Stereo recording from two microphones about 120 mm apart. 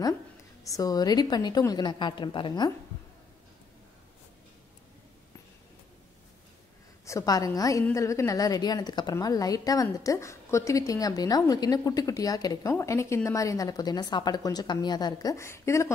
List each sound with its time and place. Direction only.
0.7 s a woman's voice: 30° left (ahead or behind)
7.1 s a woman's voice: 30° left (ahead or behind)